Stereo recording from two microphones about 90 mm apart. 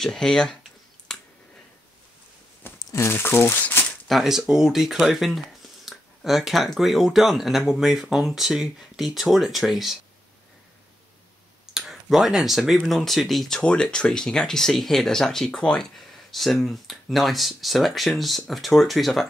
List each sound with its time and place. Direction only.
0.0 s speech: 5° left (ahead or behind)
1.1 s finger snapping: 5° left (ahead or behind)
2.6 s speech: 30° left (ahead or behind)
4.1 s speech: 5° right (ahead or behind)
11.7 s speech: 5° right (ahead or behind)